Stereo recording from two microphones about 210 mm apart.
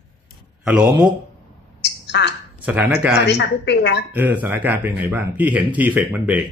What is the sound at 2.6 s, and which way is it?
Speech, 5° right (ahead or behind).